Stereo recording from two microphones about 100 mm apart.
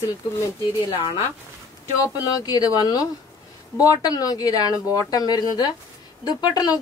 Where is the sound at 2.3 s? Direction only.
40° left (ahead or behind).